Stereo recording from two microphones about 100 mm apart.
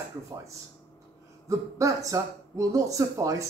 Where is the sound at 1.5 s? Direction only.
30° right (ahead or behind).